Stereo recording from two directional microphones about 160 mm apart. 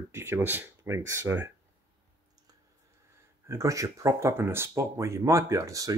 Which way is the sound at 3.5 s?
20° right (ahead or behind).